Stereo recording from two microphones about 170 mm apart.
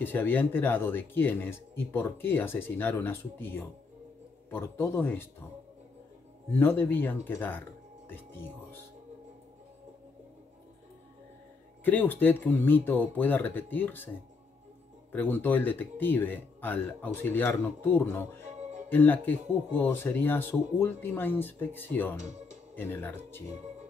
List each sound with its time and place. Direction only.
0.0 s speech: 10° left (ahead or behind)
6.6 s speech: 10° left (ahead or behind)
11.8 s speech: 10° left (ahead or behind)
15.1 s speech: 10° left (ahead or behind)
22.1 s speech: 45° right (ahead or behind)
22.8 s speech: 10° left (ahead or behind)